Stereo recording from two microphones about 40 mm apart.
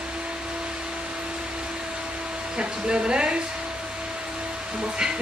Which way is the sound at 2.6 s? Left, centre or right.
Right.